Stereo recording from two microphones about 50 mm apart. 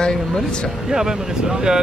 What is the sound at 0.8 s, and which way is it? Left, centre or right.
Speech, centre.